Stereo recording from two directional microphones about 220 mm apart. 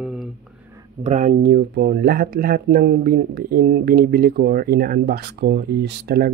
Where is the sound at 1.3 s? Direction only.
50° right (ahead or behind).